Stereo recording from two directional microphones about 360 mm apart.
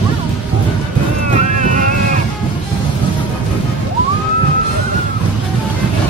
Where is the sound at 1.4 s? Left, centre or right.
Centre.